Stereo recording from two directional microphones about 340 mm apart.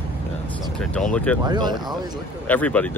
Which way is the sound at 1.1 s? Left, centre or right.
Centre.